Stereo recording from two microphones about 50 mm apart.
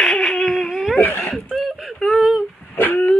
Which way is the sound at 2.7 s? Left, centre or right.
Left.